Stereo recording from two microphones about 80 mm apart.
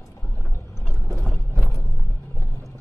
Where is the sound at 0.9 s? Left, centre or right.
Left.